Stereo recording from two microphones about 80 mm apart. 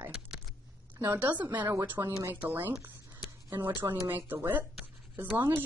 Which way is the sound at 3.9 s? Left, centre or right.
Right.